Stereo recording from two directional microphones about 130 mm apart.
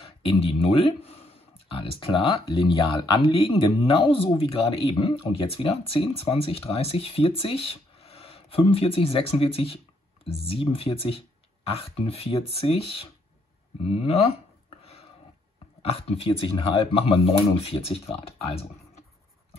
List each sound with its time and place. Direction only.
0.2 s speech: 45° left (ahead or behind)
15.8 s speech: 50° left (ahead or behind)